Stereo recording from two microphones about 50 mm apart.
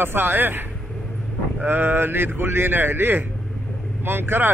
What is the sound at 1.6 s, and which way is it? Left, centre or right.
Speech, right.